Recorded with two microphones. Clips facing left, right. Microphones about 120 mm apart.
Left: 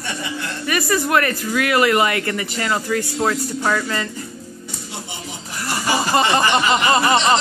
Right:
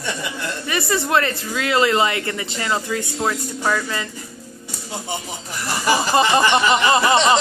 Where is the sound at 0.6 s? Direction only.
25° right (ahead or behind).